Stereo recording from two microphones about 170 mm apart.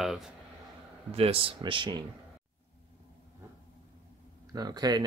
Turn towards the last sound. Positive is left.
turn(degrees=-25)  # may be behind; listen again after turning